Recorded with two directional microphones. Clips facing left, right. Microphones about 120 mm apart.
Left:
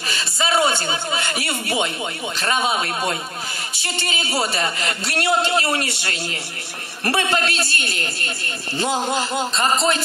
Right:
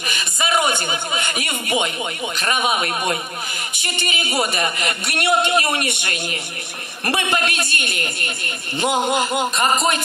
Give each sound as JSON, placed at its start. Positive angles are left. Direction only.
{"t": 0.0, "sound": "a man's voice", "side_deg": -15}